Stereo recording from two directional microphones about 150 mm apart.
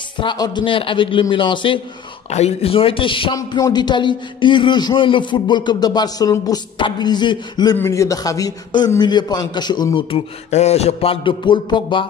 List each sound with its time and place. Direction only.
0.2 s a man's voice: 30° left (ahead or behind)
2.2 s a man's voice: 45° left (ahead or behind)
3.3 s a man's voice: 25° left (ahead or behind)
7.7 s a man's voice: 15° left (ahead or behind)
10.5 s a man's voice: 45° left (ahead or behind)